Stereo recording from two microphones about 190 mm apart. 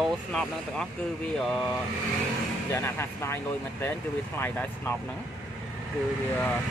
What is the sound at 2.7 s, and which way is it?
Speech, 15° left (ahead or behind).